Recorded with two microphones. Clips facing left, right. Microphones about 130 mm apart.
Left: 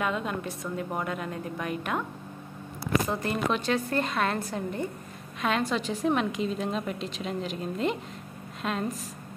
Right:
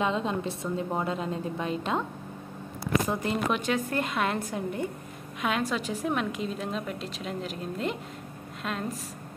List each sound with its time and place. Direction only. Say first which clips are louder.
0.0 s a woman's voice: right 2 dB; 25° right (ahead or behind)
3.1 s a woman's voice: even; 15° right (ahead or behind)